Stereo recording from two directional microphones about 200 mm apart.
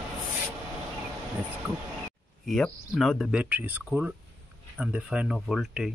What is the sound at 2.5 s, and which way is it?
Speech, 5° left (ahead or behind).